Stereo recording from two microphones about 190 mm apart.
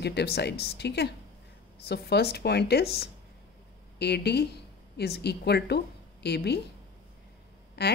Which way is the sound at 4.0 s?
60° left (ahead or behind).